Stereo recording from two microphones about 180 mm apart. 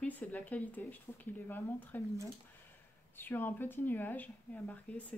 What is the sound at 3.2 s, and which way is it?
Speech, 10° left (ahead or behind).